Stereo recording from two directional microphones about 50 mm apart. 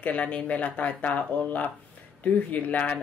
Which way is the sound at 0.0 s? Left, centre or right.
Left.